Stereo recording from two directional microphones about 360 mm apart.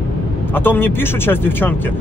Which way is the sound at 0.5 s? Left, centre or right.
Centre.